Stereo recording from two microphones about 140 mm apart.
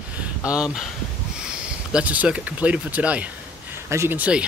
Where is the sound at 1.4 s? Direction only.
5° right (ahead or behind).